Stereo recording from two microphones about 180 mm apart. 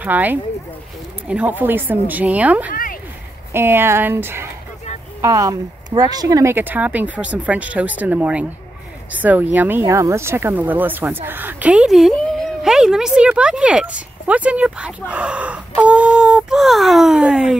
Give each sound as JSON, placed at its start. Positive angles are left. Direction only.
{"t": 0.0, "sound": "speech", "side_deg": -10}
{"t": 2.7, "sound": "a sound", "side_deg": 50}
{"t": 3.5, "sound": "speech", "side_deg": -15}